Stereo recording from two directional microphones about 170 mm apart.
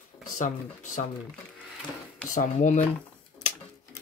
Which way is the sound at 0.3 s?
45° left (ahead or behind).